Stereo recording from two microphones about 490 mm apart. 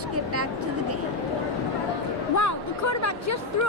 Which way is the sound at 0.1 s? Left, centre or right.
Right.